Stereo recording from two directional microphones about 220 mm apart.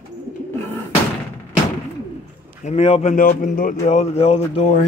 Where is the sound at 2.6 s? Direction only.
30° left (ahead or behind).